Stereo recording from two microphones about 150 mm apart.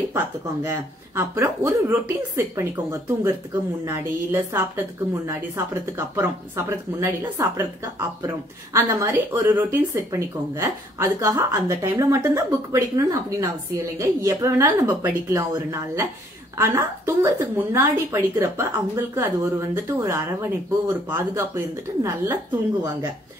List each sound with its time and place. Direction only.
0.7 s a woman's voice: 20° right (ahead or behind)
5.9 s speech: 20° right (ahead or behind)
8.7 s a woman's voice: 20° right (ahead or behind)